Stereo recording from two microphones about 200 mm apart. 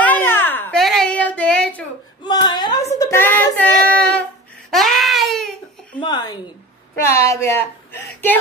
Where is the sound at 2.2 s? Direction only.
20° left (ahead or behind).